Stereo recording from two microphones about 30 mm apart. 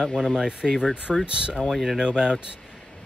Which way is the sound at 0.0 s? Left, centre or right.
Centre.